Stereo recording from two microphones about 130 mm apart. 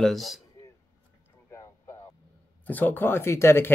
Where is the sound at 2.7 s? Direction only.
15° left (ahead or behind).